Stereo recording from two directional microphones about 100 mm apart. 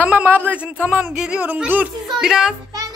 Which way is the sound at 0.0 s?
15° right (ahead or behind).